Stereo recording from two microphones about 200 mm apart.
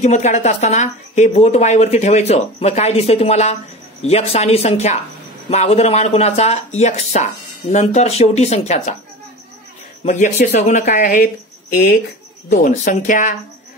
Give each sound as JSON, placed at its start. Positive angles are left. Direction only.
{"t": 0.0, "sound": "a woman's voice", "side_deg": 35}
{"t": 10.0, "sound": "a woman's voice", "side_deg": 40}